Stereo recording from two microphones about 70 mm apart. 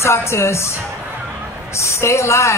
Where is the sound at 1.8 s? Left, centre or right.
Left.